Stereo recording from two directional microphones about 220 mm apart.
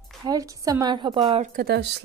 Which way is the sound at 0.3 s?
15° right (ahead or behind).